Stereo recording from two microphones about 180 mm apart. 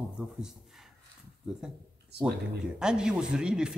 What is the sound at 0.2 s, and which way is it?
Speech, 5° right (ahead or behind).